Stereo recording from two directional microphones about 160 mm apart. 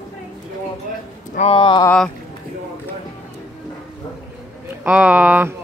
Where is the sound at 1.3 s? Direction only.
40° left (ahead or behind).